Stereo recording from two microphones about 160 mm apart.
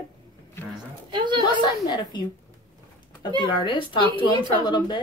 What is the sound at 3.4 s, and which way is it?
A woman's voice, 30° left (ahead or behind).